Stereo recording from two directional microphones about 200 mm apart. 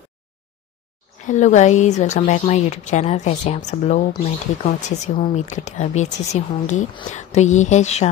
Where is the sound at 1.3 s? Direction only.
35° left (ahead or behind).